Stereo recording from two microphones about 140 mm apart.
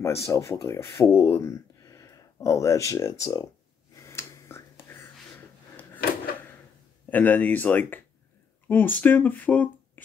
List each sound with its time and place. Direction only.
0.0 s speech: 20° left (ahead or behind)
3.9 s whispering: 20° left (ahead or behind)
5.1 s a sound: 10° left (ahead or behind)
7.1 s speech: 10° left (ahead or behind)